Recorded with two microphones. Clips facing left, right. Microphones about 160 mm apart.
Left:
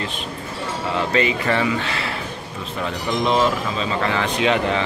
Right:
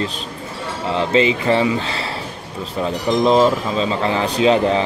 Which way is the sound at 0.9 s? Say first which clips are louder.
Right 5 dB; 25° right (ahead or behind).